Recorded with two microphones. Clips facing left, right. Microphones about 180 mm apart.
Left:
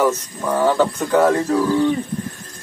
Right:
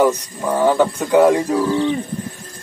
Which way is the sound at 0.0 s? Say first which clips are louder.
Right 2 dB; 10° right (ahead or behind).